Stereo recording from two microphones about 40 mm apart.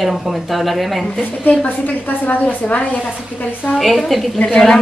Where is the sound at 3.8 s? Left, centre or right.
Centre.